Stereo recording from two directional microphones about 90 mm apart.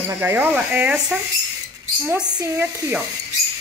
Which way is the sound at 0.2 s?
20° right (ahead or behind).